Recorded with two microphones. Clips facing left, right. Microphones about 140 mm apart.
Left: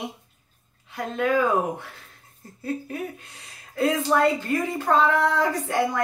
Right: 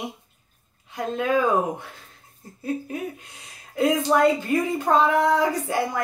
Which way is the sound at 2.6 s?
15° right (ahead or behind).